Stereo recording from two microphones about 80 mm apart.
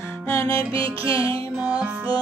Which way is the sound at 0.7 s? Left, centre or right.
Right.